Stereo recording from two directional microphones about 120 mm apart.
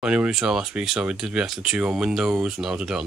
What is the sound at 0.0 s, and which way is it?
Speech, 5° right (ahead or behind).